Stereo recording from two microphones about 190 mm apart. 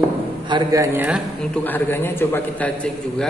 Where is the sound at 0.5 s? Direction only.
20° right (ahead or behind).